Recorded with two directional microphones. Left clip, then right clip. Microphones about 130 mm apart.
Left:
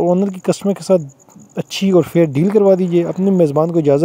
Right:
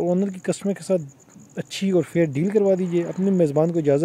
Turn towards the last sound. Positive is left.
turn(degrees=35)  # may be behind; listen again after turning